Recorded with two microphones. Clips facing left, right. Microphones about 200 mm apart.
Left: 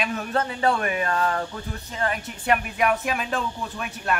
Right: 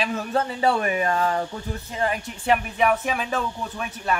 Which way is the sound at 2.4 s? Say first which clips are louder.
Right 2 dB; centre (ahead or behind).